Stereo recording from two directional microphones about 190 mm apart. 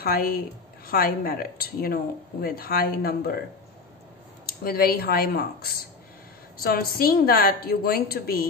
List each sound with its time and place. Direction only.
0.0 s a woman's voice: 50° left (ahead or behind)
4.5 s a woman's voice: 55° left (ahead or behind)